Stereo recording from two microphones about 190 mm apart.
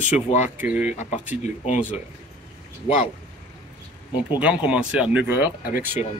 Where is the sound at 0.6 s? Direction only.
10° right (ahead or behind).